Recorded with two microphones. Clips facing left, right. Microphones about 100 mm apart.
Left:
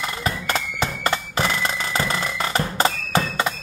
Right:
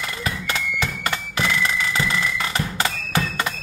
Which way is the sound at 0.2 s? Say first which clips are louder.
Left 2 dB; 35° left (ahead or behind).